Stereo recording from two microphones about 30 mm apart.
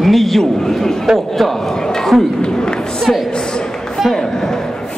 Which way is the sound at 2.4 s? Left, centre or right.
Left.